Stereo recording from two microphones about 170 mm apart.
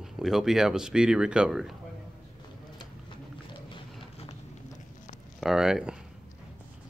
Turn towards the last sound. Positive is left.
turn(degrees=-5)  # may be behind; listen again after turning